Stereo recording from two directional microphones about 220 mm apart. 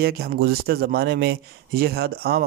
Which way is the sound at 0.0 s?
45° right (ahead or behind).